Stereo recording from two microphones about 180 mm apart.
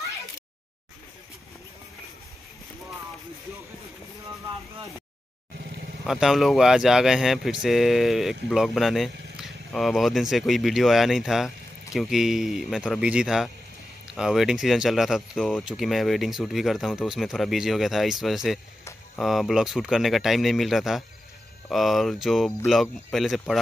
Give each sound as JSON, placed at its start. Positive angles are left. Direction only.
{"t": 6.0, "sound": "speech", "side_deg": 0}